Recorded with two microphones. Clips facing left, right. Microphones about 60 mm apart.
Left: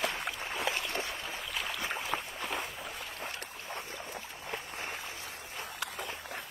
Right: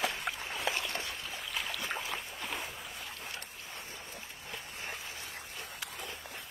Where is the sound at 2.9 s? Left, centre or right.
Left.